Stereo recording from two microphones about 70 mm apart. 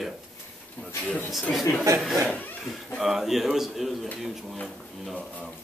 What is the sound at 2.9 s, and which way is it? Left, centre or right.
Speech, centre.